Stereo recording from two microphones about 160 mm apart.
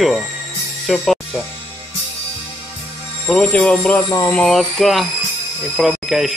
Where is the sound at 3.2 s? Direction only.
10° left (ahead or behind).